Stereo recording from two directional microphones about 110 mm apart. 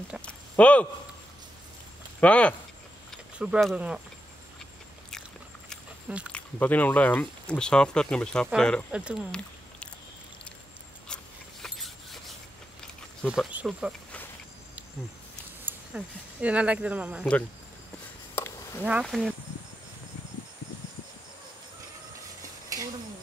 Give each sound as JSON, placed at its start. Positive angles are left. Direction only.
{"t": 0.2, "sound": "speech", "side_deg": 10}
{"t": 2.1, "sound": "speech", "side_deg": 10}
{"t": 3.3, "sound": "speech", "side_deg": -10}
{"t": 6.3, "sound": "speech", "side_deg": 15}
{"t": 8.9, "sound": "speech", "side_deg": -10}
{"t": 11.6, "sound": "a sound", "side_deg": 0}
{"t": 13.7, "sound": "speech", "side_deg": -5}
{"t": 15.6, "sound": "speech", "side_deg": -10}
{"t": 17.2, "sound": "speech", "side_deg": 10}
{"t": 18.3, "sound": "a sound", "side_deg": 20}
{"t": 19.0, "sound": "speech", "side_deg": 0}
{"t": 22.7, "sound": "a sound", "side_deg": -30}